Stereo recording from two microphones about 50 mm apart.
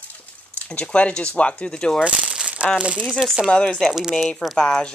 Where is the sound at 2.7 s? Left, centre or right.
Centre.